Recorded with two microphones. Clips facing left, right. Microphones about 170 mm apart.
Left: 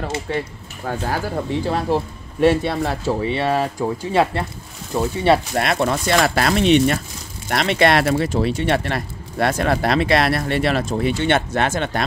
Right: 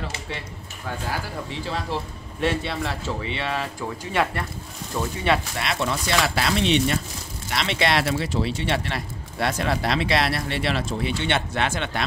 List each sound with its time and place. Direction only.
0.0 s speech: 50° left (ahead or behind)
5.6 s speech: 50° left (ahead or behind)